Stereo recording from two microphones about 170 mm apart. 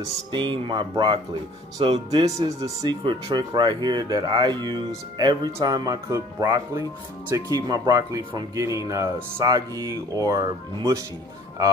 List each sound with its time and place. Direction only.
0.0 s speech: 25° right (ahead or behind)